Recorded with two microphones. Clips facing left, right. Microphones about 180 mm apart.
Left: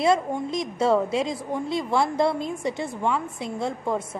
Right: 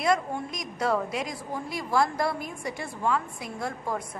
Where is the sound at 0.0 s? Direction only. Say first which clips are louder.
Left 4 dB; 25° left (ahead or behind).